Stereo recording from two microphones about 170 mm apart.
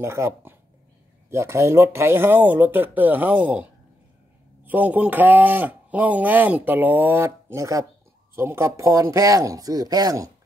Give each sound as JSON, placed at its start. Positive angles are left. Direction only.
{"t": 0.0, "sound": "speech", "side_deg": -15}
{"t": 4.6, "sound": "speech", "side_deg": -10}